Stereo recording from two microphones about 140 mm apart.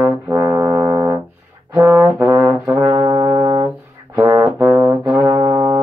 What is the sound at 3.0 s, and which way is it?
Brass instrument, 30° right (ahead or behind).